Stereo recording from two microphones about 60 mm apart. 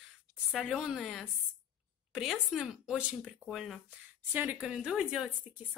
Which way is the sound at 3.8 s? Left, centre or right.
Right.